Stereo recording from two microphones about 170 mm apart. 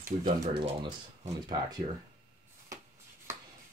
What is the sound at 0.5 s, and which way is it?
Speech, 30° right (ahead or behind).